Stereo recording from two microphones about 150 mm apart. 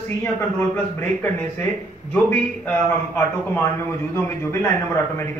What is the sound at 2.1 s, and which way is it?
Speech, 15° left (ahead or behind).